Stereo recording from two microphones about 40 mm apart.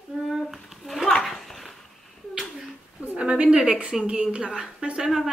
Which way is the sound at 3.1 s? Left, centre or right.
Right.